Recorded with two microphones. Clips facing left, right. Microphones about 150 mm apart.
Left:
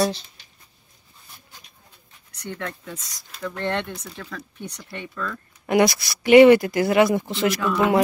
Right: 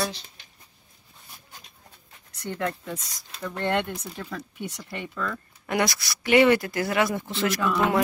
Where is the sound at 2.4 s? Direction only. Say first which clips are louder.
Right 3 dB; 5° right (ahead or behind).